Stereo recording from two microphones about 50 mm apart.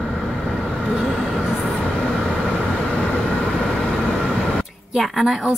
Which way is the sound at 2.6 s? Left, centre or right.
Left.